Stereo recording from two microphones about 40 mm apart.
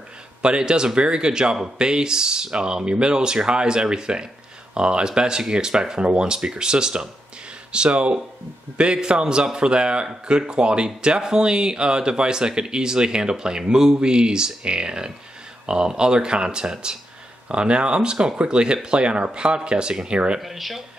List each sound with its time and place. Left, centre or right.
0.4 s speech: right
20.3 s speech: centre